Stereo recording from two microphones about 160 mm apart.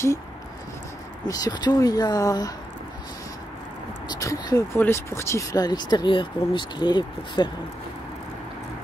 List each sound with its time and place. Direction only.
1.2 s speech: 25° left (ahead or behind)
4.1 s speech: 20° left (ahead or behind)